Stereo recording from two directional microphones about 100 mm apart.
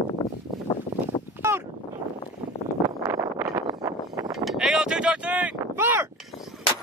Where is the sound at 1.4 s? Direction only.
25° right (ahead or behind).